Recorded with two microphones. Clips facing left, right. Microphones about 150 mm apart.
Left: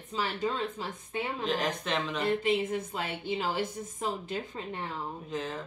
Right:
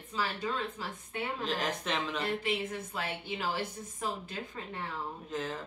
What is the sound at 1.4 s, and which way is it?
Speech, centre (ahead or behind).